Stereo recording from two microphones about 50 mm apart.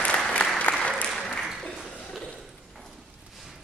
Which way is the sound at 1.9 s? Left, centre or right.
Centre.